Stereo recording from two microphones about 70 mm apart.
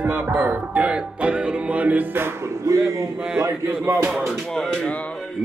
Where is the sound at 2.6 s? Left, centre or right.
Right.